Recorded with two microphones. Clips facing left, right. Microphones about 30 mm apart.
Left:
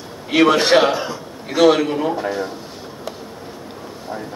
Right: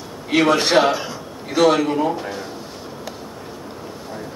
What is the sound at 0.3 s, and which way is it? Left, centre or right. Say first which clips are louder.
A man's voice: left 2 dB; centre.